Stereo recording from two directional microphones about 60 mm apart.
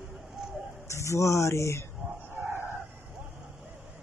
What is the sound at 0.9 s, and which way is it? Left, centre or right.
Speech, left.